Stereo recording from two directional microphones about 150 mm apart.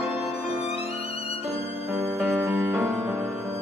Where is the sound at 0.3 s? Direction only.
40° left (ahead or behind).